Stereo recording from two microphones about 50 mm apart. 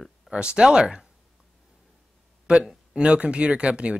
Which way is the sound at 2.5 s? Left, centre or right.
Centre.